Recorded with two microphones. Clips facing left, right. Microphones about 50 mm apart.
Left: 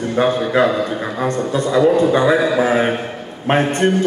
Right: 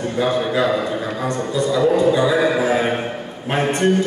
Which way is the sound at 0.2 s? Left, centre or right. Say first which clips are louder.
Left 4 dB; left.